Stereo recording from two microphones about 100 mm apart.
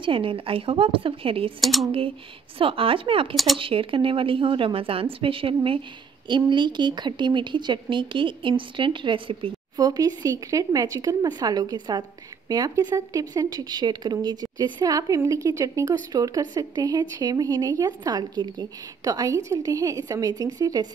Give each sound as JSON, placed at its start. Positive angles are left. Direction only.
{"t": 0.0, "sound": "a woman's voice", "side_deg": -60}
{"t": 1.6, "sound": "speech", "side_deg": 0}
{"t": 2.6, "sound": "a woman's voice", "side_deg": -65}
{"t": 6.2, "sound": "speech", "side_deg": -50}
{"t": 9.8, "sound": "speech", "side_deg": -40}